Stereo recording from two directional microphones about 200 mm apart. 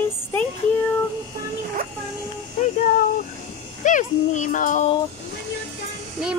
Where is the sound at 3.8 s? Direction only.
40° left (ahead or behind).